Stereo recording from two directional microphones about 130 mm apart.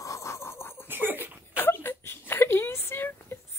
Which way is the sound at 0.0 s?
25° left (ahead or behind).